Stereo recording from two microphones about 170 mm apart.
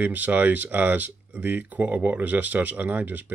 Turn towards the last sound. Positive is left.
turn(degrees=-10)  # may be behind; listen again after turning